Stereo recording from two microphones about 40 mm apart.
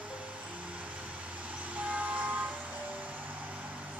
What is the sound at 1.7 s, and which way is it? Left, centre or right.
Vehicle, right.